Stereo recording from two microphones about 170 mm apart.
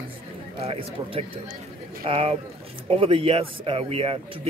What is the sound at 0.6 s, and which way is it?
Speech, 30° right (ahead or behind).